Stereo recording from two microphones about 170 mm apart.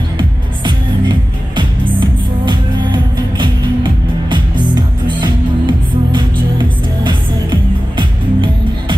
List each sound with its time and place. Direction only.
0.2 s music: 30° right (ahead or behind)